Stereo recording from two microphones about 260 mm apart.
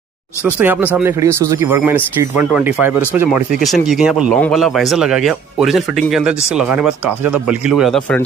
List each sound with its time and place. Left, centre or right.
0.6 s speech: centre